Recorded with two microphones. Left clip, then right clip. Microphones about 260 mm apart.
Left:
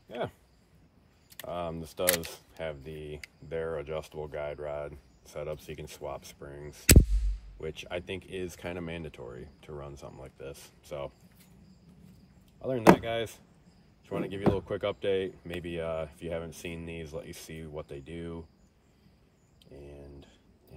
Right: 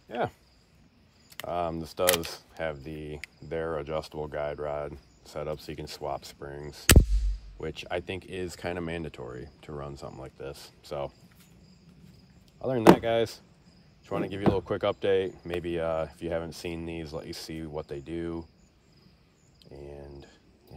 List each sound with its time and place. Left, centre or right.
1.3 s speech: right
13.0 s speech: right